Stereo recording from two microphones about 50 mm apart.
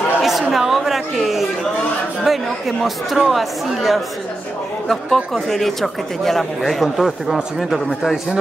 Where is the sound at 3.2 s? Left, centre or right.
Centre.